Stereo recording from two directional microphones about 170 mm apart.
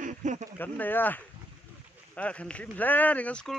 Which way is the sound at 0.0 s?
45° right (ahead or behind).